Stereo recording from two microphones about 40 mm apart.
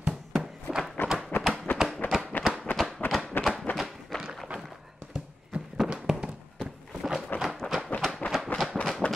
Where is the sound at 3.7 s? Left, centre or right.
Left.